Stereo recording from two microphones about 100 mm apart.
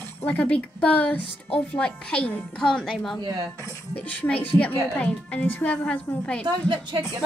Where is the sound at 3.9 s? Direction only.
15° left (ahead or behind).